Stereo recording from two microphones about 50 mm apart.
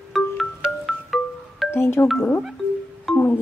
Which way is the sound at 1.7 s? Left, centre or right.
Left.